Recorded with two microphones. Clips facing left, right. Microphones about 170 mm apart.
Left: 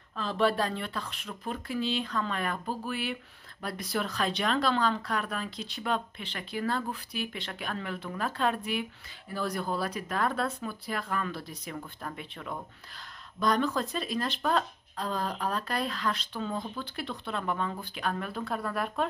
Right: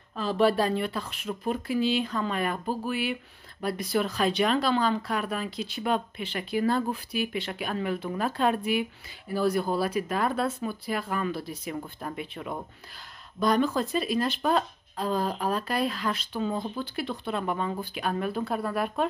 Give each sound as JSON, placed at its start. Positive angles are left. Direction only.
{"t": 0.1, "sound": "speech", "side_deg": -5}